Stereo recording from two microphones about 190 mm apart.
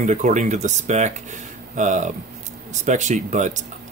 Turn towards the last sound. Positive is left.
turn(degrees=-40)  # may be behind; listen again after turning